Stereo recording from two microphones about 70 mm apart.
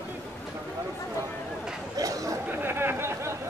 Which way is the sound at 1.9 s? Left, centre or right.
Right.